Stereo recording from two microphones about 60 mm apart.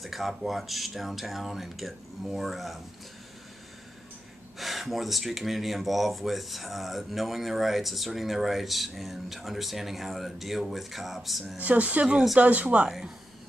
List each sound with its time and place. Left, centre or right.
0.0 s speech: centre
4.6 s speech: centre
11.5 s speech: right